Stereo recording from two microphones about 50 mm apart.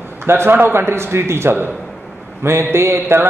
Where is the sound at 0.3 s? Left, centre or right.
Right.